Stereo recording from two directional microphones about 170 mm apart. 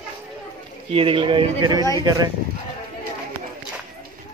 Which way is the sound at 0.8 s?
30° right (ahead or behind).